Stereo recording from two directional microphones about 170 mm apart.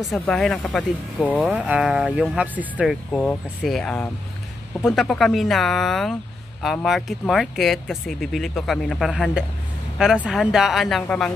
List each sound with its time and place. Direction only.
0.0 s speech: centre (ahead or behind)